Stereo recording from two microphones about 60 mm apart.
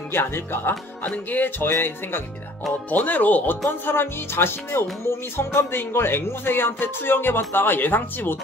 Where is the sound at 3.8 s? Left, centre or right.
Left.